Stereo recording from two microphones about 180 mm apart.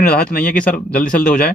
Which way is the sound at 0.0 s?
60° left (ahead or behind).